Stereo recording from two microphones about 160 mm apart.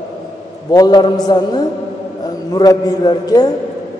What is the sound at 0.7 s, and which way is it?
A woman's voice, 25° left (ahead or behind).